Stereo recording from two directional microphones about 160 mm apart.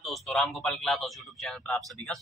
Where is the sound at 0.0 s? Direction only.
5° left (ahead or behind).